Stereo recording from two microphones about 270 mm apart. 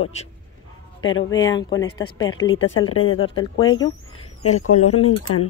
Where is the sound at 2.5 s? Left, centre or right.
Left.